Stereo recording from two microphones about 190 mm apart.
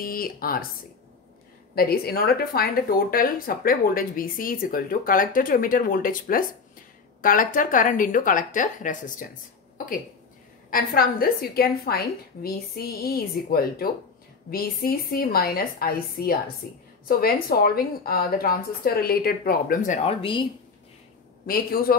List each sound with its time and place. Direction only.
0.0 s speech: 50° left (ahead or behind)
1.8 s speech: 55° left (ahead or behind)
10.7 s speech: 50° left (ahead or behind); by 20.4 s 30° left (ahead or behind)